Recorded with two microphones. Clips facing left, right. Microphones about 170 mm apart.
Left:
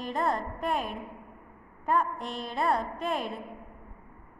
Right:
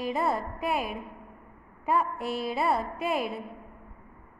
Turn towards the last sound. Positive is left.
turn(degrees=-10)  # may be behind; listen again after turning